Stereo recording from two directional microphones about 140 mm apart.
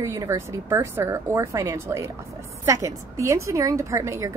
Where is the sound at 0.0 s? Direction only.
20° right (ahead or behind).